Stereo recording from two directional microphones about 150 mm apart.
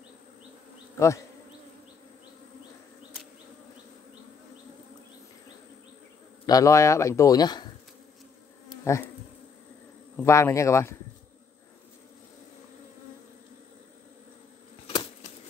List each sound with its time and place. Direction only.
0.9 s speech: 20° left (ahead or behind)
6.4 s speech: 25° left (ahead or behind)
8.8 s bee: 20° left (ahead or behind)
10.2 s speech: 20° left (ahead or behind)